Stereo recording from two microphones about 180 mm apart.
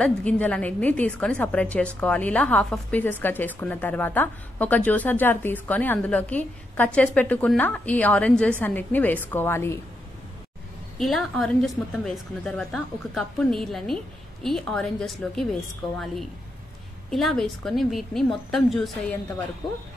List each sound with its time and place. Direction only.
0.0 s a woman's voice: 5° left (ahead or behind)
11.0 s speech: centre (ahead or behind)
17.1 s speech: centre (ahead or behind)